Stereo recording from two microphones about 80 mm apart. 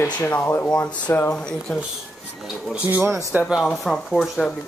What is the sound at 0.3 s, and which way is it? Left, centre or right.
Speech, left.